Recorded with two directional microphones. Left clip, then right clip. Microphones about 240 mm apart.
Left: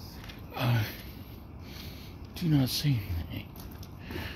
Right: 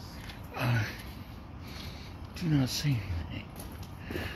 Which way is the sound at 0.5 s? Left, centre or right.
Centre.